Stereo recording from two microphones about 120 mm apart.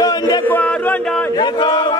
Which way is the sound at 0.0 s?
35° left (ahead or behind).